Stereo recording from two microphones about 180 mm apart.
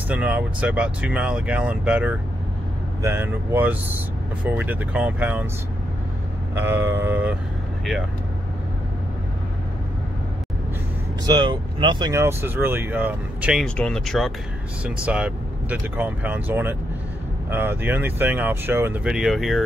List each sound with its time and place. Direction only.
0.1 s speech: 5° right (ahead or behind)
6.5 s speech: 15° right (ahead or behind)
11.2 s speech: 25° right (ahead or behind); by 19.6 s centre (ahead or behind)